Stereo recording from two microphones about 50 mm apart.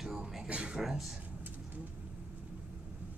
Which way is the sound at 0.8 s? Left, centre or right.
Centre.